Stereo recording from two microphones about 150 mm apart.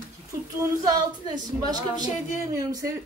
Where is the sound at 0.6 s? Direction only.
25° right (ahead or behind).